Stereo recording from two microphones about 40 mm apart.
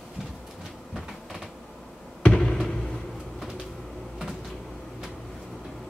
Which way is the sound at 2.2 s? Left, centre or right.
Centre.